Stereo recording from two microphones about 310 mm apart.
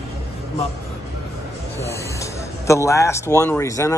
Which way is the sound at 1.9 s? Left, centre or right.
Centre.